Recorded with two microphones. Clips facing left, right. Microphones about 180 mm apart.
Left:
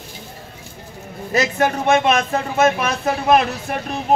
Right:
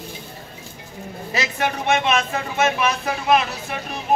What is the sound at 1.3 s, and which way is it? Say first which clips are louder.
Speech: left 6 dB; 45° left (ahead or behind).